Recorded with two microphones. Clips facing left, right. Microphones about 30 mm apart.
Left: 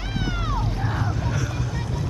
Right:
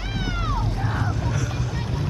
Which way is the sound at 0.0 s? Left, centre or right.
Centre.